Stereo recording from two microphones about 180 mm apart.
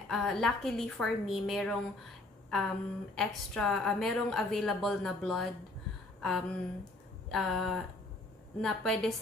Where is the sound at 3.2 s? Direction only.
Centre (ahead or behind).